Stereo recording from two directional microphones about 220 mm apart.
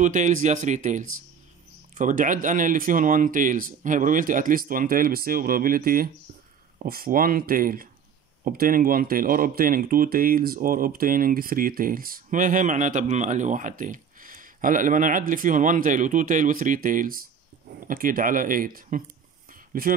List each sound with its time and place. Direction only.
0.0 s speech: 35° right (ahead or behind)